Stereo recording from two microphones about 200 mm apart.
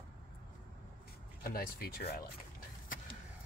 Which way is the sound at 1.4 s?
50° left (ahead or behind).